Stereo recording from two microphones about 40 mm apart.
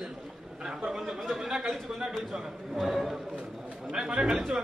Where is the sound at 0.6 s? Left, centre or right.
Centre.